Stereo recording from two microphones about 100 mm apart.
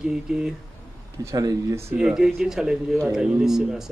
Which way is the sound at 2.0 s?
5° right (ahead or behind).